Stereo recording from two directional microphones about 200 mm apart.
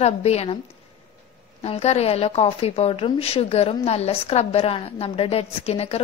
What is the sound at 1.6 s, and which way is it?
A woman's voice, 30° left (ahead or behind).